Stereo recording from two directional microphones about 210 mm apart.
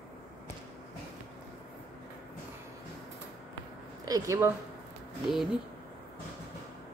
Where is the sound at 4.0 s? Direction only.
15° right (ahead or behind).